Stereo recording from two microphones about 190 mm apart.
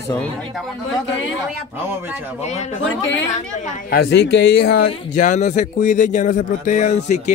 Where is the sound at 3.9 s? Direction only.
60° left (ahead or behind).